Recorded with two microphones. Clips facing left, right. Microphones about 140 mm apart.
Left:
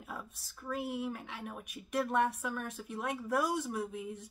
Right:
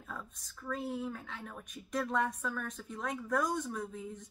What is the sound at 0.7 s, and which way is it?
Speech, 65° left (ahead or behind).